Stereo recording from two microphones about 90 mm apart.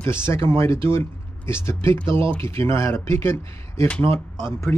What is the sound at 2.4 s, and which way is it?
Speech, 30° left (ahead or behind).